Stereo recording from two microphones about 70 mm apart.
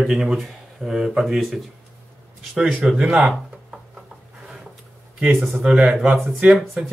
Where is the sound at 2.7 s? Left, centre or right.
Centre.